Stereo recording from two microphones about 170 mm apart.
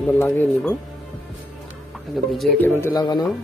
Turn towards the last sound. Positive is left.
turn(degrees=25)  # may be behind; listen again after turning